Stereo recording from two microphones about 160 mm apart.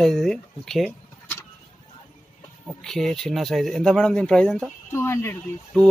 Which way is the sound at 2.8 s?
Centre (ahead or behind).